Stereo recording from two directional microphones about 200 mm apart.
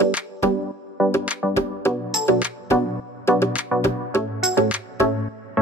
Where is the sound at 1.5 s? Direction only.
10° left (ahead or behind).